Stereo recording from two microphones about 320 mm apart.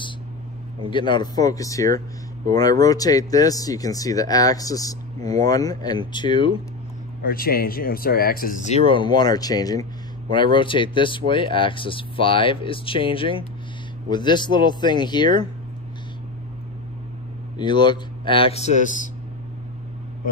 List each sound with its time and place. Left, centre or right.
0.8 s speech: centre
7.2 s speech: left
17.6 s speech: centre